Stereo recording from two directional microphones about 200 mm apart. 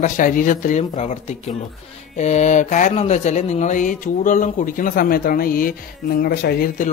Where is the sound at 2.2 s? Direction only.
35° left (ahead or behind).